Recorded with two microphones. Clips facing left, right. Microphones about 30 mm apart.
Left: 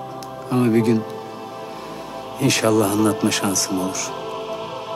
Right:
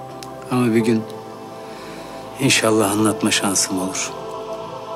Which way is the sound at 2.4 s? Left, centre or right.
Centre.